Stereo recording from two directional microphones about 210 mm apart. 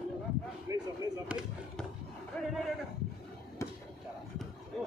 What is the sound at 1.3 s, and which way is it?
Speech, 5° right (ahead or behind).